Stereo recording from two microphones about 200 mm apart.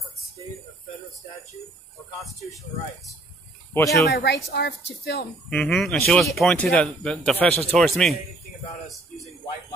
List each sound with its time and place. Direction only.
3.7 s speech: 15° left (ahead or behind)
4.1 s speech: 55° left (ahead or behind)
5.5 s a man's voice: 5° left (ahead or behind)